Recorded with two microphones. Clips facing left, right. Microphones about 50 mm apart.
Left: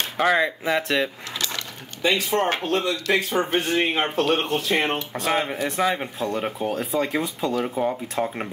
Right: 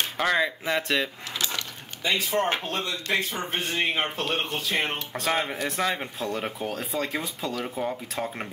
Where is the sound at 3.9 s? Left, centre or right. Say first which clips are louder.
Left 3 dB; centre.